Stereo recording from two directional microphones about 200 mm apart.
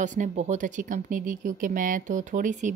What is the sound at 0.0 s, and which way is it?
A woman's voice, 40° right (ahead or behind).